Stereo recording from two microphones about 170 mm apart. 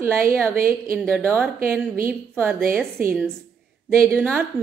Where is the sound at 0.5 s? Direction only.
55° right (ahead or behind).